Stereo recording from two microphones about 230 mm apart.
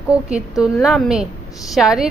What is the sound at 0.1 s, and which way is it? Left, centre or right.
A woman's voice, centre.